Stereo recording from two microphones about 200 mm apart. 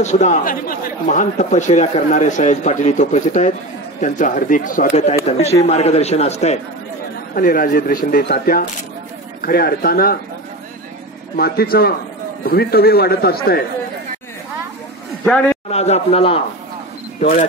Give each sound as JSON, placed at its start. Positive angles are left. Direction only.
{"t": 0.0, "sound": "speech", "side_deg": 35}
{"t": 7.3, "sound": "speech", "side_deg": 45}
{"t": 11.3, "sound": "speech", "side_deg": 50}
{"t": 15.2, "sound": "a man's voice", "side_deg": 5}
{"t": 15.7, "sound": "speech", "side_deg": 30}
{"t": 17.2, "sound": "speech", "side_deg": 40}